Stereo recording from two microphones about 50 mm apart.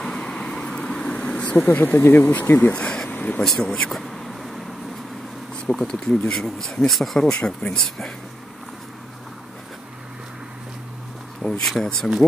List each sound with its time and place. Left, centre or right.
0.0 s vehicle: centre
1.6 s speech: left
2.0 s speech: left
2.7 s speech: left
3.1 s vehicle: left
3.4 s speech: centre
4.0 s vehicle: centre
5.7 s speech: centre
7.2 s speech: centre
11.4 s speech: left
12.2 s speech: left